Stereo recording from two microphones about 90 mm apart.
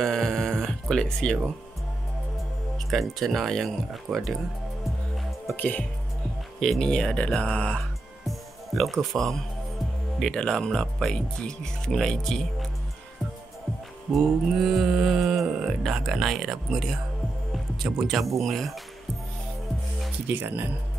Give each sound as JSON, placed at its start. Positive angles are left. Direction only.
{"t": 0.0, "sound": "a sound", "side_deg": 5}
{"t": 2.9, "sound": "mantra", "side_deg": 0}
{"t": 5.6, "sound": "speech", "side_deg": 15}
{"t": 6.6, "sound": "speech", "side_deg": 5}
{"t": 8.3, "sound": "music", "side_deg": 0}
{"t": 10.1, "sound": "mantra", "side_deg": 5}
{"t": 14.1, "sound": "mantra", "side_deg": 0}
{"t": 17.9, "sound": "mantra", "side_deg": -5}
{"t": 20.2, "sound": "speech", "side_deg": -20}